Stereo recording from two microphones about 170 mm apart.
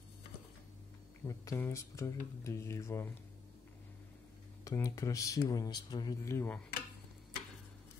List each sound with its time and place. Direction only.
1.2 s speech: 20° left (ahead or behind)
4.6 s speech: 20° left (ahead or behind)